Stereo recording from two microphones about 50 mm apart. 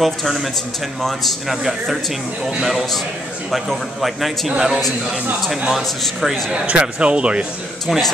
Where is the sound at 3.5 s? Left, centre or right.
Centre.